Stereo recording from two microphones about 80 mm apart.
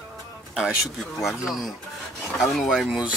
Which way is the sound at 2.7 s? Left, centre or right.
Centre.